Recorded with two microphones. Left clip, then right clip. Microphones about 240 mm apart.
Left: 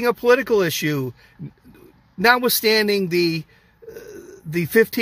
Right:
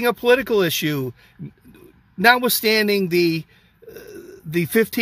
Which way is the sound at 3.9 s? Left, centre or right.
Centre.